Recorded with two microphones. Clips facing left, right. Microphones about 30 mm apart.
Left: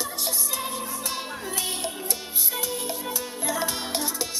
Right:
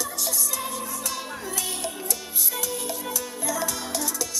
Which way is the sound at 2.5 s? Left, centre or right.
Left.